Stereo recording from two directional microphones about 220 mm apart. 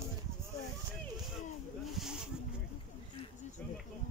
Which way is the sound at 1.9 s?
Centre (ahead or behind).